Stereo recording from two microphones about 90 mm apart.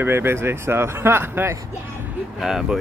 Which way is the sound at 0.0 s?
25° right (ahead or behind).